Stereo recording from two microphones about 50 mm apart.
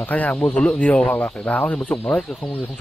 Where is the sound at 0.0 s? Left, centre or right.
Left.